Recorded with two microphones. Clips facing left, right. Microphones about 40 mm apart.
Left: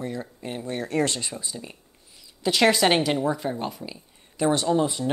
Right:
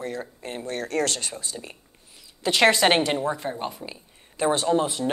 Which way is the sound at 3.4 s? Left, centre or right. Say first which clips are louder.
Left 1 dB; centre.